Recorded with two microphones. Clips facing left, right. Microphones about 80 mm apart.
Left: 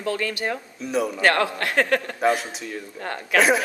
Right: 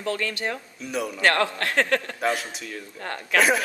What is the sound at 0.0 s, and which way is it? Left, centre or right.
Speech, centre.